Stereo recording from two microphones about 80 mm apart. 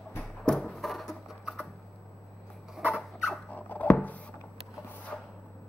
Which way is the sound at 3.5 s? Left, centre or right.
Left.